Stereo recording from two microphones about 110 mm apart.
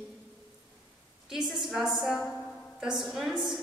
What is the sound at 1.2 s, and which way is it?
A woman's voice, 5° right (ahead or behind).